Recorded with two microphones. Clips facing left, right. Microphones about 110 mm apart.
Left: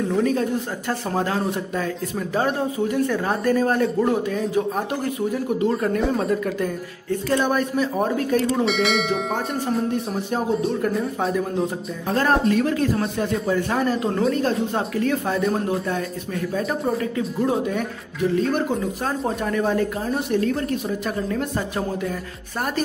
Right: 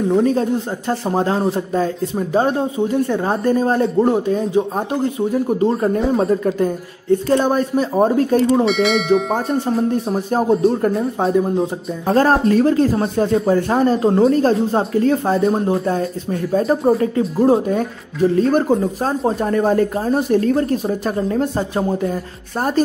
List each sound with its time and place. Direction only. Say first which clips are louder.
0.1 s speech: right 6 dB; 30° right (ahead or behind)
8.6 s speech: right 5 dB; centre (ahead or behind)
10.7 s speech: right 5 dB; 35° right (ahead or behind)
12.1 s speech: right 5 dB; 40° right (ahead or behind)